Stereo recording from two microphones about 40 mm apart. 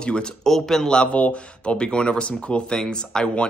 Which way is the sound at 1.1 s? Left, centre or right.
Left.